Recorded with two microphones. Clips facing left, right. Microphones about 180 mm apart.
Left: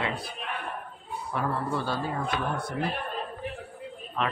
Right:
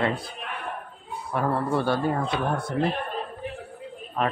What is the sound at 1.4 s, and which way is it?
Speech, 60° right (ahead or behind).